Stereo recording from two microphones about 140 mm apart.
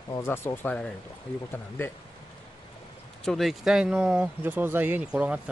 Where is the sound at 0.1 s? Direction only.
20° left (ahead or behind).